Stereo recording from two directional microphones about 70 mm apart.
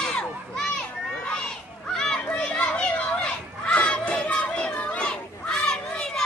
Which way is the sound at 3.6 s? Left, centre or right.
Centre.